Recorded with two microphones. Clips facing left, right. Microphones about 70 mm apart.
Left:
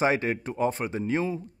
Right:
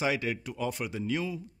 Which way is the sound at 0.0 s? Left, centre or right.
Left.